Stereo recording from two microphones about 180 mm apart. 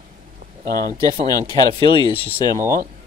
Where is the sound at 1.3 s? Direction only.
20° left (ahead or behind).